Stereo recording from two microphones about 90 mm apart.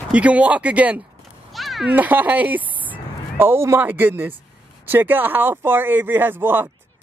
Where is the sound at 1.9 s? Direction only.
20° right (ahead or behind).